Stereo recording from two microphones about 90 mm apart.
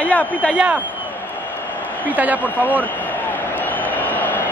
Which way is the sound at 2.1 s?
20° right (ahead or behind).